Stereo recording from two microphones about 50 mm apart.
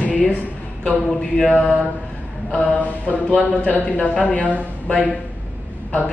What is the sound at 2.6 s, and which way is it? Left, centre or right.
A woman's voice, left.